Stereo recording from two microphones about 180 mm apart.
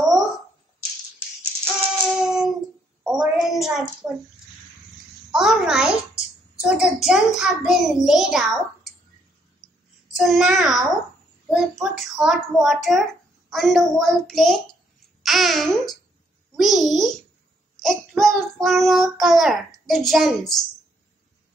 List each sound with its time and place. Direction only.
1.6 s music: 10° right (ahead or behind)
3.0 s a sound: 5° right (ahead or behind)
4.0 s speech: 15° right (ahead or behind)
5.3 s a child's voice: 5° right (ahead or behind)
10.1 s a child's voice: centre (ahead or behind)
15.2 s babbling: centre (ahead or behind)
16.5 s a child's voice: centre (ahead or behind)